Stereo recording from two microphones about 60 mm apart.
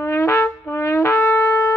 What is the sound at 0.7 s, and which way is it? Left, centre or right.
Wind instrument, left.